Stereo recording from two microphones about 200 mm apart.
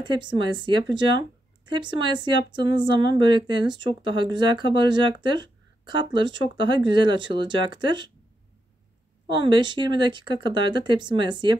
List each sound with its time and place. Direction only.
0.0 s speech: 25° right (ahead or behind)
9.3 s speech: 25° right (ahead or behind)